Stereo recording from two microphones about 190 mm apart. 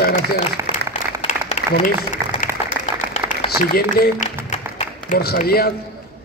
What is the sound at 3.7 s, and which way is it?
A man's voice, 50° left (ahead or behind).